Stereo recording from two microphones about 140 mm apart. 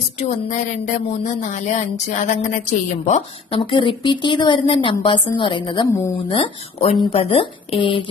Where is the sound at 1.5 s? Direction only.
60° left (ahead or behind).